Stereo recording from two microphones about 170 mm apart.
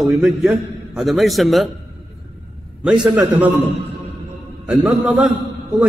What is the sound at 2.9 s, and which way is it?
Speech, 5° right (ahead or behind).